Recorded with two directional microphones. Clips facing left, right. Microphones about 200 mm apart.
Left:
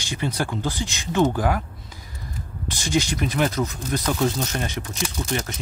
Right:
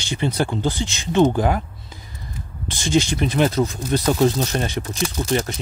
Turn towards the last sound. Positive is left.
turn(degrees=-30)  # may be behind; listen again after turning